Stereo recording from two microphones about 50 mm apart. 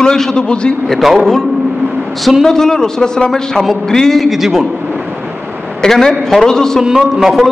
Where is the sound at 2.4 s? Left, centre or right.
Centre.